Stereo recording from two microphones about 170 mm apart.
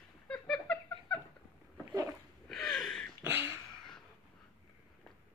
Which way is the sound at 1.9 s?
20° right (ahead or behind).